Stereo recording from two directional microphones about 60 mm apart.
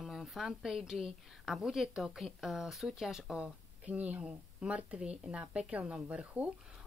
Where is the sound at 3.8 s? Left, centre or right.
Right.